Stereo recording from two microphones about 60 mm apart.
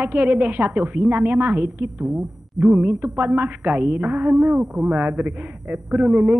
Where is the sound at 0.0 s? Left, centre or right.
Right.